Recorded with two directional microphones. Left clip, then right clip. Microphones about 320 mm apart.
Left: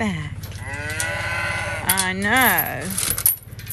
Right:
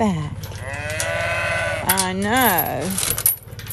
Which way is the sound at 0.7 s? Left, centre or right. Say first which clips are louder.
Right 2 dB; right.